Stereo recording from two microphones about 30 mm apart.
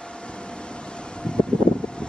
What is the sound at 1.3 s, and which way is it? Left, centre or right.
Vehicle, left.